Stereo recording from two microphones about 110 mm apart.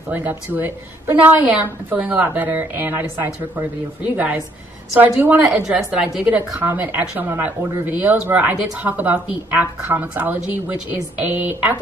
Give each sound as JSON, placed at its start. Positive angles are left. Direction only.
{"t": 0.1, "sound": "speech", "side_deg": -15}
{"t": 5.0, "sound": "speech", "side_deg": -15}